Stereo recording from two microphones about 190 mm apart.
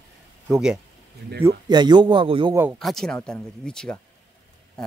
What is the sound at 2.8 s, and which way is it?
Speech, centre (ahead or behind).